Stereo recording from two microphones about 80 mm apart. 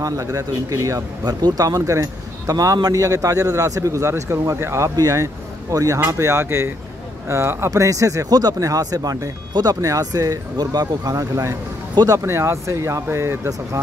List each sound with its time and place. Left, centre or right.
0.0 s speech: right
1.4 s speech: right
9.8 s speech: right
12.2 s speech: right